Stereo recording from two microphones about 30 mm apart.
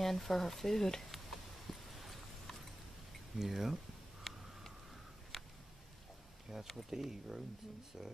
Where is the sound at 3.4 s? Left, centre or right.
Centre.